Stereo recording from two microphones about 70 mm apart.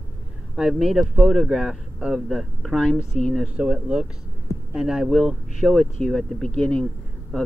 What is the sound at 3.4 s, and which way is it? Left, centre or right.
Speech, centre.